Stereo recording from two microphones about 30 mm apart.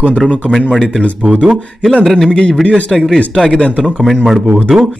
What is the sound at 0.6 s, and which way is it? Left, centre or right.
Speech, centre.